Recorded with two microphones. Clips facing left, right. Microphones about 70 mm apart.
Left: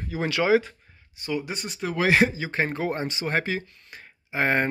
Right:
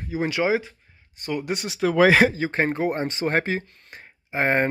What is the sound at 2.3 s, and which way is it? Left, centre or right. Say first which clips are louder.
Speech: right 4 dB; right.